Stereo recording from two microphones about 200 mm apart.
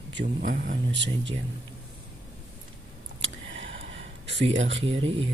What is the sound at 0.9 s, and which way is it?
Speech, 65° right (ahead or behind).